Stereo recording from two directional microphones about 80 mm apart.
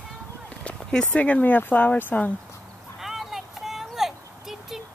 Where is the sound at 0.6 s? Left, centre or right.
Centre.